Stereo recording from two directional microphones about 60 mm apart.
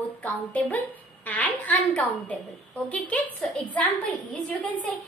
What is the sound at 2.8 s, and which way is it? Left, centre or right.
A woman's voice, left.